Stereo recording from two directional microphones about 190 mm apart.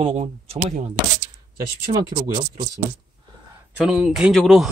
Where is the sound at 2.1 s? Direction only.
40° right (ahead or behind).